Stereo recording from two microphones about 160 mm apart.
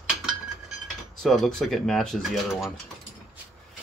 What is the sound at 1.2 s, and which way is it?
Speech, centre (ahead or behind).